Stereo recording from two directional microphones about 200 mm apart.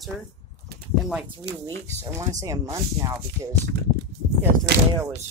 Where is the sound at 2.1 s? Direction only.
15° right (ahead or behind).